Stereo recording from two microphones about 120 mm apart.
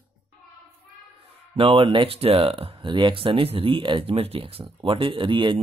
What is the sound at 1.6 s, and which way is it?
Speech, 50° right (ahead or behind).